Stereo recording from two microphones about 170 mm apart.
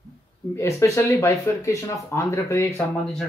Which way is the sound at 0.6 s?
15° left (ahead or behind).